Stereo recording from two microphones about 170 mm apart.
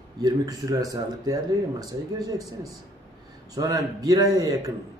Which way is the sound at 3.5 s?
20° right (ahead or behind).